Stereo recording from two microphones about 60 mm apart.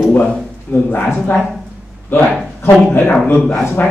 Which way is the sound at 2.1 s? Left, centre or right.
Left.